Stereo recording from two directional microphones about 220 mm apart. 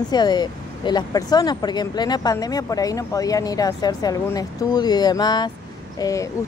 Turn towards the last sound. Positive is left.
turn(degrees=15)  # may be behind; listen again after turning